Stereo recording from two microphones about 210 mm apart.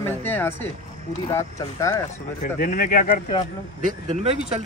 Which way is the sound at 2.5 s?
40° left (ahead or behind).